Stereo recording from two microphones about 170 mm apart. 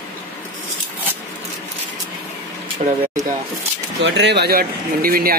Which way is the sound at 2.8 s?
45° right (ahead or behind).